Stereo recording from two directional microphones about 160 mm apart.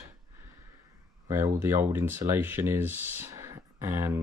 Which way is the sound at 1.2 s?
20° right (ahead or behind).